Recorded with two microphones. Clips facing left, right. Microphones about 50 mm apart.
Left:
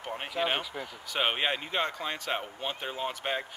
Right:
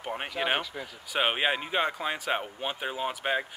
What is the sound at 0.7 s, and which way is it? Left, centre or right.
Speech, centre.